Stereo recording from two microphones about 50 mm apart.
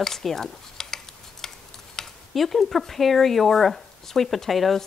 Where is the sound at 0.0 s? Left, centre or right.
Centre.